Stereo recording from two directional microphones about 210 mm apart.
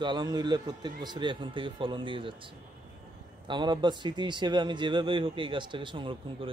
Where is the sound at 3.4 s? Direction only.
20° right (ahead or behind).